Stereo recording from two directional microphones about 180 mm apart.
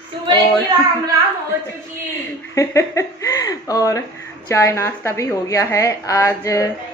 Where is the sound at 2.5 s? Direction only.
15° left (ahead or behind).